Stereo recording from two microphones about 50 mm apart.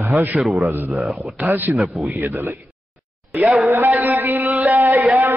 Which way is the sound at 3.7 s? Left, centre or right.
Right.